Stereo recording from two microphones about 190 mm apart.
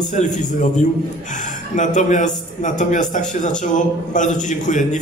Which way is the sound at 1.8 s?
40° left (ahead or behind).